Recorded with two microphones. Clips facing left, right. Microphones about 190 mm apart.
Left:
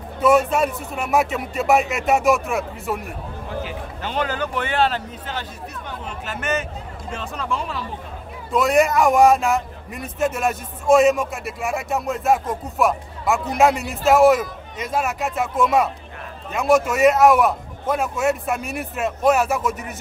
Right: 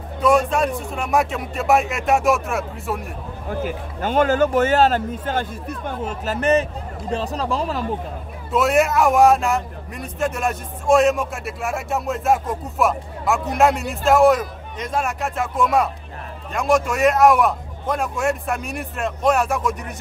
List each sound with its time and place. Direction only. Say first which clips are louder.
0.2 s a man's voice: left 1 dB; 5° left (ahead or behind)
3.6 s speech: right 5 dB; 45° right (ahead or behind)
8.5 s a man's voice: even; 5° right (ahead or behind)